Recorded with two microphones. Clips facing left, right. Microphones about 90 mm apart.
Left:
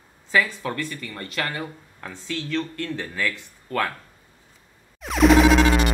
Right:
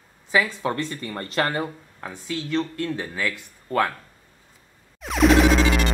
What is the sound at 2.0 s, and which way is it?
Speech, 15° right (ahead or behind).